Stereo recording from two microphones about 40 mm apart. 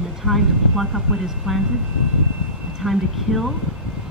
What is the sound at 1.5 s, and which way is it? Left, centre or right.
Speech, centre.